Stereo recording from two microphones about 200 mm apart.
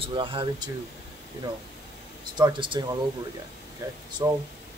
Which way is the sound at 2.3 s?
20° right (ahead or behind).